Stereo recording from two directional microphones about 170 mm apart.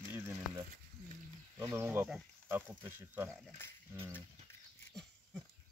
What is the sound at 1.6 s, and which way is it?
Speech, 15° right (ahead or behind).